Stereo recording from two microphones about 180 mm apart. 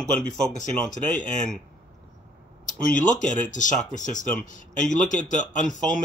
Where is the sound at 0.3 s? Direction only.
45° left (ahead or behind).